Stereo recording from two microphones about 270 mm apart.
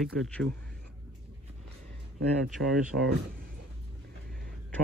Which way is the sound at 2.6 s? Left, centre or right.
Right.